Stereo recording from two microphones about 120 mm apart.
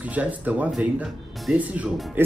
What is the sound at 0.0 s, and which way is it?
Speech, 10° right (ahead or behind).